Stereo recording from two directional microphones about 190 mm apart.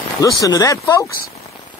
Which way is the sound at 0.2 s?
20° left (ahead or behind).